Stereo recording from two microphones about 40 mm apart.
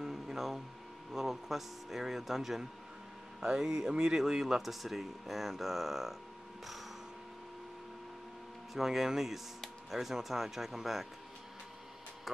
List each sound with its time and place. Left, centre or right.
0.0 s a sound: centre
1.1 s speech: centre
8.7 s speech: centre